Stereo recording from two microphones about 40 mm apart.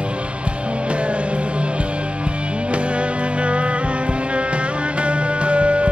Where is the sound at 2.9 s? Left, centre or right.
Right.